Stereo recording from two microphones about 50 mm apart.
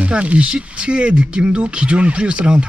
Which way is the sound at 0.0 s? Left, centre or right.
Right.